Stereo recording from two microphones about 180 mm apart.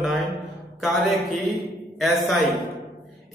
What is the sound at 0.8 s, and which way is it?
A man's voice, centre (ahead or behind).